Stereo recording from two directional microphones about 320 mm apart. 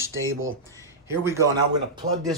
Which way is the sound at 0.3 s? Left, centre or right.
Right.